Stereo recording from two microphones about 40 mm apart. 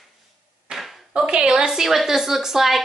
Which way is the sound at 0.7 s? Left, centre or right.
Right.